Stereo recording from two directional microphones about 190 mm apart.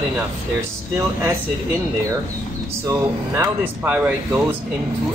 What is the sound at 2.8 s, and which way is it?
Speech, 15° right (ahead or behind).